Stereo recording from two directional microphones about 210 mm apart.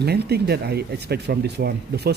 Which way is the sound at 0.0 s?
50° right (ahead or behind).